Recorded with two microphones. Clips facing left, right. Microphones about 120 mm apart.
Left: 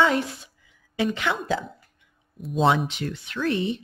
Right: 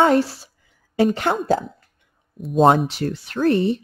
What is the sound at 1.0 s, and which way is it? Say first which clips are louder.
Speech: right 6 dB; 45° right (ahead or behind).